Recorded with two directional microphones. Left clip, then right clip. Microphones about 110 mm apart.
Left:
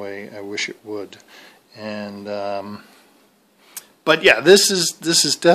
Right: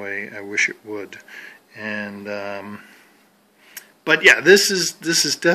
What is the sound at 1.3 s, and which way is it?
Speech, 25° left (ahead or behind).